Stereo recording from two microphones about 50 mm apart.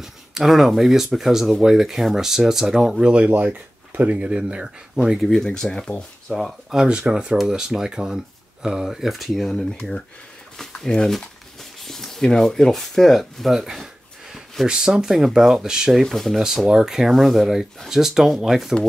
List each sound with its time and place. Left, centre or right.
0.0 s speech: centre
2.9 s speech: right
5.3 s speech: centre
6.7 s speech: centre
10.8 s speech: centre
16.0 s speech: centre
16.4 s speech: centre